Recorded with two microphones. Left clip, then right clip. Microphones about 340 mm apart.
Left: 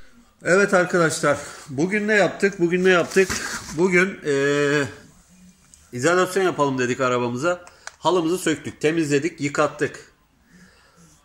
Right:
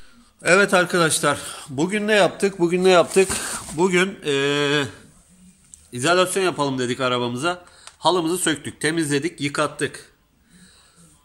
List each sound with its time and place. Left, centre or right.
0.4 s a man's voice: centre
5.9 s a man's voice: centre